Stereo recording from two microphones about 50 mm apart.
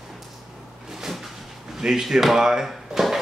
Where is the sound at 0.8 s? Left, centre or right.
Centre.